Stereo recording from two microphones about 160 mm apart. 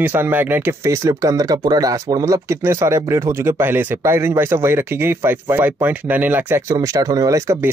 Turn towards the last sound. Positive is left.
turn(degrees=-20)  # may be behind; listen again after turning